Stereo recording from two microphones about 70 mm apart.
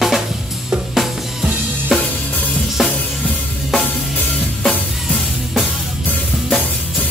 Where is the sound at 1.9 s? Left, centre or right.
Centre.